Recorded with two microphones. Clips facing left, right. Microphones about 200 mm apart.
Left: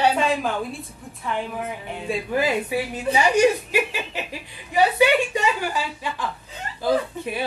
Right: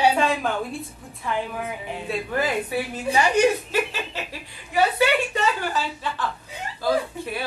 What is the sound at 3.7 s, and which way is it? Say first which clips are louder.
Snicker: left 1 dB; 15° left (ahead or behind).